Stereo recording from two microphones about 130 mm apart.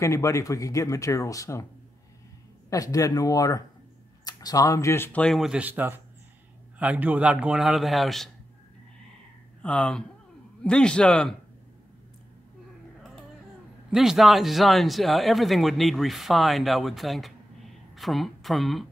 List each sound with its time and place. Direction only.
0.0 s speech: 25° left (ahead or behind)
2.7 s speech: 25° left (ahead or behind)
5.3 s a man's voice: 5° right (ahead or behind)
9.6 s a man's voice: 10° left (ahead or behind)
13.8 s a man's voice: 5° right (ahead or behind)